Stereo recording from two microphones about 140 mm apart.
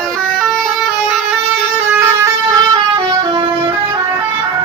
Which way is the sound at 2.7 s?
30° right (ahead or behind).